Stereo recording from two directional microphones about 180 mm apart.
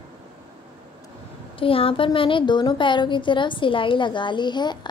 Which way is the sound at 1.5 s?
30° left (ahead or behind).